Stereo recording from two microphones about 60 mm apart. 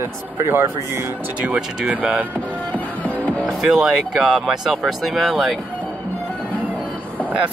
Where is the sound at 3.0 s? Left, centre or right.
Left.